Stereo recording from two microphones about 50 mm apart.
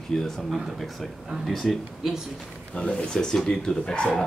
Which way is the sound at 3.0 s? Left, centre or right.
Centre.